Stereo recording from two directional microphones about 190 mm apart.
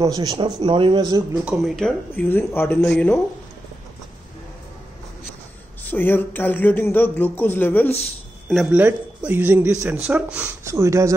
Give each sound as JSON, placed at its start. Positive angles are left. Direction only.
{"t": 0.0, "sound": "speech", "side_deg": -20}
{"t": 1.4, "sound": "speech", "side_deg": 0}
{"t": 5.9, "sound": "speech", "side_deg": 10}
{"t": 8.8, "sound": "speech", "side_deg": -10}